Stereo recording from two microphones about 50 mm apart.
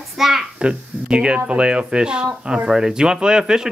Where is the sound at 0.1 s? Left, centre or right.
Centre.